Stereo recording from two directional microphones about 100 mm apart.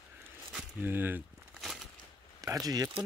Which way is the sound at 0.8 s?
20° right (ahead or behind).